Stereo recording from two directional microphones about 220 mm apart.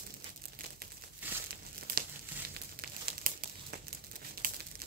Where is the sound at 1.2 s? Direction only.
10° right (ahead or behind).